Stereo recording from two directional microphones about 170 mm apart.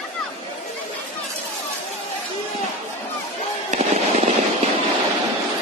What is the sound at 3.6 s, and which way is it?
Fireworks, 40° right (ahead or behind).